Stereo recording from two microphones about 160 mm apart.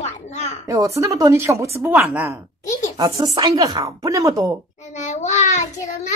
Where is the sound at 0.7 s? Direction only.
20° right (ahead or behind).